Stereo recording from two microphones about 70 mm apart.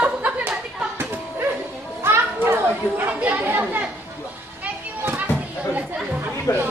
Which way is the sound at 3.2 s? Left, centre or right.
Right.